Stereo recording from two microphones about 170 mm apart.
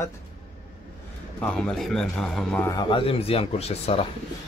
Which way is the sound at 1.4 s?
5° left (ahead or behind).